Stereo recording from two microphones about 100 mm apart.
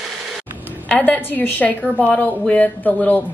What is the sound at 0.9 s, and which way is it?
A woman's voice, 15° left (ahead or behind).